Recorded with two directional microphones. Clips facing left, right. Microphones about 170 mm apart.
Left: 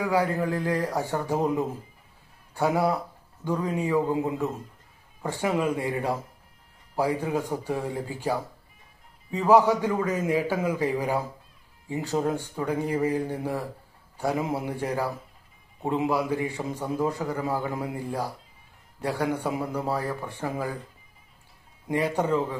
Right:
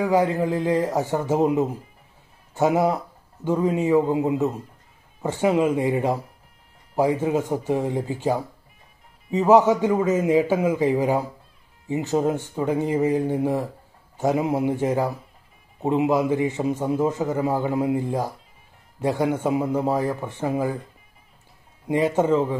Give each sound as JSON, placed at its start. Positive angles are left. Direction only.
{"t": 0.0, "sound": "a man's voice", "side_deg": -20}
{"t": 21.8, "sound": "a man's voice", "side_deg": -20}